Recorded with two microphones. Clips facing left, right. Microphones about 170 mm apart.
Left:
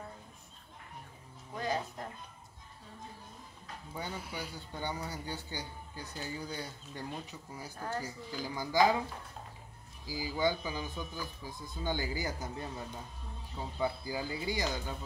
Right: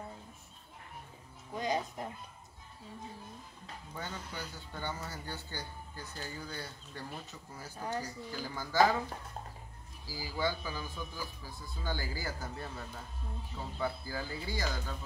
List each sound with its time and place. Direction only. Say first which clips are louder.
1.6 s speech: right 1 dB; 15° right (ahead or behind)
3.9 s speech: left 2 dB; 10° left (ahead or behind)
7.7 s speech: right 1 dB; 15° right (ahead or behind)
8.0 s speech: left 1 dB; 10° left (ahead or behind)
10.0 s speech: left 3 dB; 15° left (ahead or behind)